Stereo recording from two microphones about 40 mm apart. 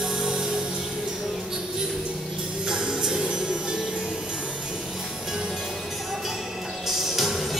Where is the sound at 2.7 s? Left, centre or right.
Centre.